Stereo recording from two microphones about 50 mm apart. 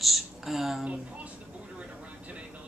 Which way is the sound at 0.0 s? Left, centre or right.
Centre.